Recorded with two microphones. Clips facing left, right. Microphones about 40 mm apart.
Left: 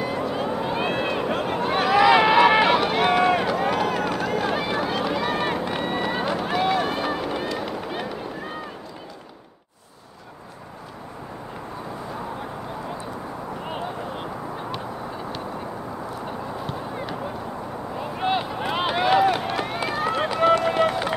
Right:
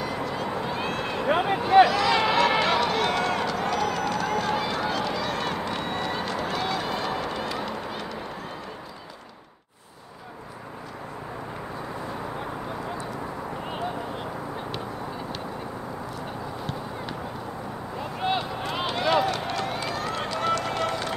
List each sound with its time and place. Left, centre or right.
0.0 s a sound: centre
1.2 s a sound: centre
1.9 s run: left; by 7.7 s centre
7.9 s run: left
17.9 s vehicle: centre
18.4 s run: left